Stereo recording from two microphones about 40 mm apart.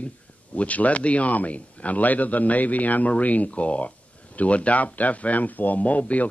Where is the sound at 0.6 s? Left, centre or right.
Left.